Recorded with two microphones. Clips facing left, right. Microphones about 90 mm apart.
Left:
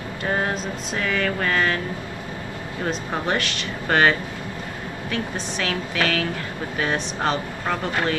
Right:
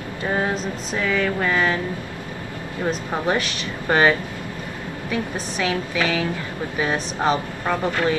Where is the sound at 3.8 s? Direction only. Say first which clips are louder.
Right 1 dB; 10° right (ahead or behind).